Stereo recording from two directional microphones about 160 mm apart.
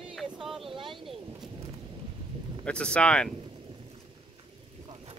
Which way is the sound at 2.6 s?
5° left (ahead or behind).